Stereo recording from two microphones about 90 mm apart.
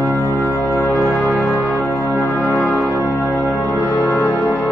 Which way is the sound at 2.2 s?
30° left (ahead or behind).